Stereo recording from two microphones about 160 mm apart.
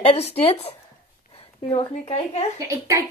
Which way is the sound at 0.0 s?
40° left (ahead or behind).